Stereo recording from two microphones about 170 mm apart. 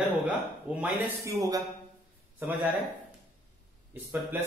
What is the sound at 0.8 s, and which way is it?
Speech, 20° right (ahead or behind).